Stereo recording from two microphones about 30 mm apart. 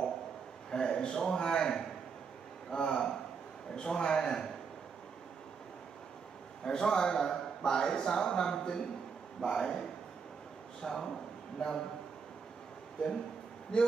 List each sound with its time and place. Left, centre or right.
0.7 s a man's voice: left
6.6 s a man's voice: left
13.7 s a man's voice: left